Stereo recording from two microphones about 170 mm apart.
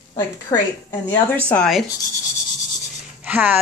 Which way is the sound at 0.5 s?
20° left (ahead or behind).